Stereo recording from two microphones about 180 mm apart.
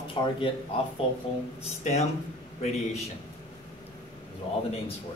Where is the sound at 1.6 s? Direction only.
40° left (ahead or behind).